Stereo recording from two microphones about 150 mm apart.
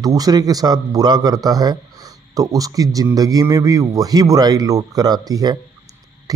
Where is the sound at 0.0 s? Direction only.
25° right (ahead or behind).